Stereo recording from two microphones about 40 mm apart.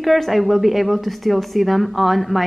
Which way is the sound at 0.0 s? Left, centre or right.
Centre.